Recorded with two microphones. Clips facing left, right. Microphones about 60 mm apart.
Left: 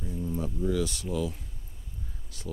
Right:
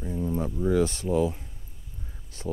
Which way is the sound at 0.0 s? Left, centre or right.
Right.